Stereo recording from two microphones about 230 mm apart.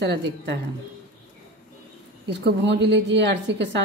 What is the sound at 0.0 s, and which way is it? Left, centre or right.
Speech, right.